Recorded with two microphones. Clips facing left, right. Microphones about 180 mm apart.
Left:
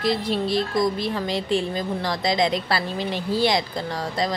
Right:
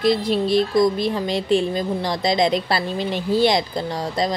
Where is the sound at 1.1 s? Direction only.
20° right (ahead or behind).